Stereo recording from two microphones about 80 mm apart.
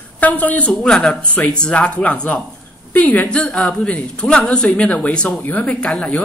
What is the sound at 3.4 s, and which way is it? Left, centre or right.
Speech, centre.